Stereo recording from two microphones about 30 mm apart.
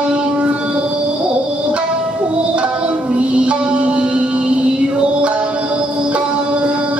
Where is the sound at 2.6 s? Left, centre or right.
Right.